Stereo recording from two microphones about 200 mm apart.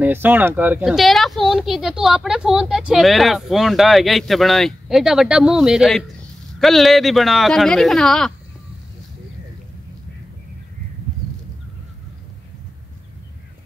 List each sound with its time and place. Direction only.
0.0 s speech: 10° right (ahead or behind)